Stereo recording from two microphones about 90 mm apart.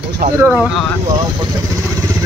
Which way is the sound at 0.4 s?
25° right (ahead or behind).